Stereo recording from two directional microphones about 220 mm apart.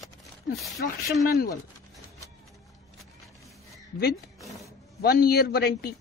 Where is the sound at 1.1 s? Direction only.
45° left (ahead or behind).